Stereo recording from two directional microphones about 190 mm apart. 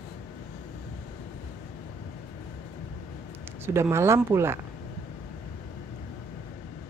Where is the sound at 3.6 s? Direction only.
15° right (ahead or behind).